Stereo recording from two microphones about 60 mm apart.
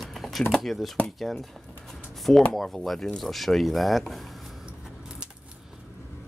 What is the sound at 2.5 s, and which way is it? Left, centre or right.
Speech, centre.